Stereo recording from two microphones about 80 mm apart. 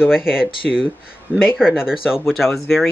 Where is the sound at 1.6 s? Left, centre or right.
Centre.